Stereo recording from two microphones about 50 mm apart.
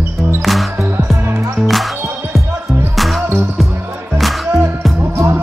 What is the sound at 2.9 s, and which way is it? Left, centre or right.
Music, centre.